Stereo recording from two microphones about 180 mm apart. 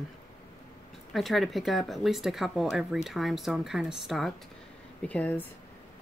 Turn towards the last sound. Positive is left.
turn(degrees=10)  # may be behind; listen again after turning